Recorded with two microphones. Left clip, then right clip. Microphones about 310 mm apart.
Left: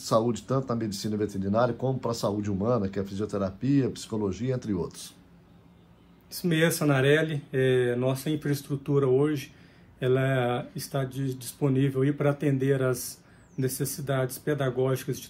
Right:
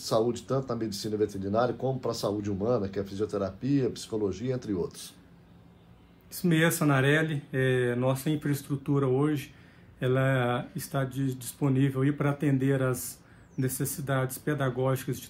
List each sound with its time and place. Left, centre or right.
0.0 s speech: centre
6.4 s speech: centre
14.0 s speech: centre